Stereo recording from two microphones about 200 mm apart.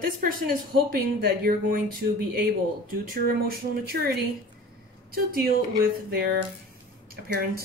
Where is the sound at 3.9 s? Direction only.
50° right (ahead or behind).